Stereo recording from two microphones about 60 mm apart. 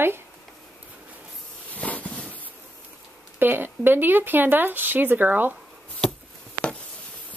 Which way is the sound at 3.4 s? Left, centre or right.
Right.